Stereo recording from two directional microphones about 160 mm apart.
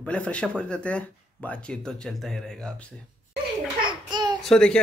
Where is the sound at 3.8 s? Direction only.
30° right (ahead or behind).